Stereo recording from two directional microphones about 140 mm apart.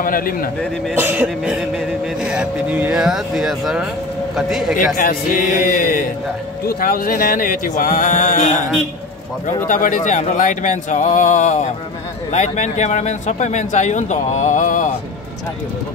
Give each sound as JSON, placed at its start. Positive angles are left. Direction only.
{"t": 0.0, "sound": "a man's voice", "side_deg": 90}
{"t": 0.9, "sound": "a sound", "side_deg": -10}
{"t": 2.2, "sound": "speech", "side_deg": -10}
{"t": 4.7, "sound": "speech", "side_deg": 85}
{"t": 6.7, "sound": "speech", "side_deg": 90}
{"t": 9.7, "sound": "speech", "side_deg": 75}